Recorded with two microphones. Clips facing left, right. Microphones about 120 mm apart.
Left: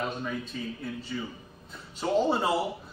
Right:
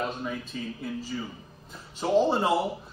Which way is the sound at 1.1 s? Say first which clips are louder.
Left 3 dB; 20° right (ahead or behind).